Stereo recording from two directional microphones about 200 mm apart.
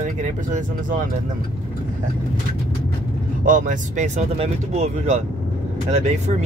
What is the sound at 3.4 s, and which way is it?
Speech, 40° right (ahead or behind).